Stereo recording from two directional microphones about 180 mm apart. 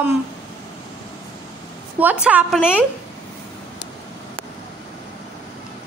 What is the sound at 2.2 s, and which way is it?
Speech, 5° right (ahead or behind).